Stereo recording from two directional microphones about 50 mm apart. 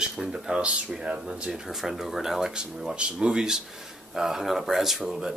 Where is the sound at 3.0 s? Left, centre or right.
Centre.